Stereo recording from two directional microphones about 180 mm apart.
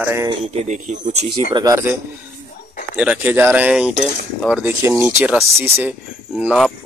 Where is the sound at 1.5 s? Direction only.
15° right (ahead or behind).